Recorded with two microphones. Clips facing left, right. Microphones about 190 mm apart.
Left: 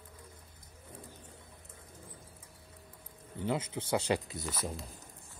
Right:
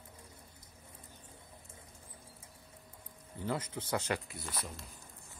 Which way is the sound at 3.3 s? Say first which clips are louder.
Left 3 dB; 25° left (ahead or behind).